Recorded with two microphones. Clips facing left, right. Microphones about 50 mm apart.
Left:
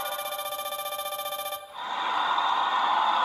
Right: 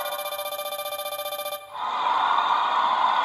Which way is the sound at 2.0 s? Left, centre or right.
Centre.